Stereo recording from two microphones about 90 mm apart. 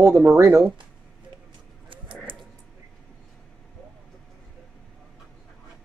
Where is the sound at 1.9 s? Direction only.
70° right (ahead or behind).